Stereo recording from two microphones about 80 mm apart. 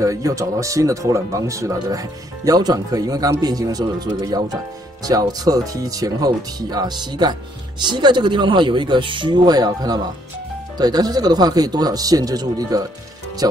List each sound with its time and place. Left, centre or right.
0.0 s speech: right